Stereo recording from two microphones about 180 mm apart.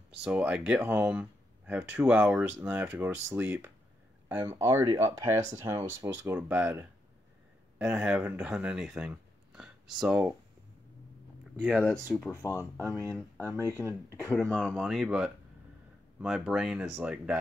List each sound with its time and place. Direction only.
0.2 s speech: 5° right (ahead or behind)
11.6 s speech: 5° left (ahead or behind)
14.3 s speech: 5° left (ahead or behind)
14.6 s speech: 5° right (ahead or behind)